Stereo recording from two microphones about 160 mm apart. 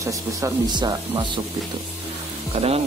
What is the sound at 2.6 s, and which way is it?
Speech, 40° right (ahead or behind).